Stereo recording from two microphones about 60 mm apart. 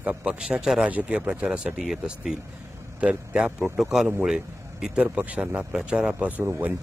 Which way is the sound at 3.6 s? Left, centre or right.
Centre.